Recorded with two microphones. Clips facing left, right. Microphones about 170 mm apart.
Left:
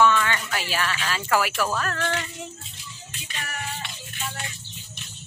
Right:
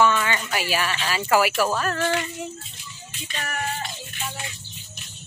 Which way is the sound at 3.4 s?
45° right (ahead or behind).